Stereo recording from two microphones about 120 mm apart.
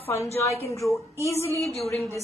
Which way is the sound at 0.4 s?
25° left (ahead or behind).